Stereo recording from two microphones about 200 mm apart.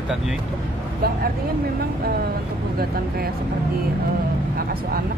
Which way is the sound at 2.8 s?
50° right (ahead or behind).